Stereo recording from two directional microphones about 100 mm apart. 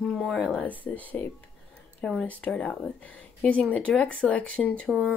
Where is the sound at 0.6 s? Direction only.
15° left (ahead or behind).